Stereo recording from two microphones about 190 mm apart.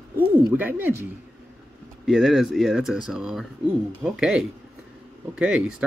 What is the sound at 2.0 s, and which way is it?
Speech, 5° right (ahead or behind).